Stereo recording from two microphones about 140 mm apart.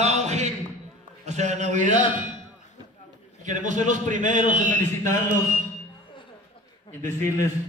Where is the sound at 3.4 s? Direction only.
60° right (ahead or behind).